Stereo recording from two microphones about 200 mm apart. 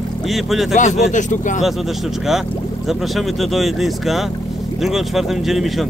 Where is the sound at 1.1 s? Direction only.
40° left (ahead or behind).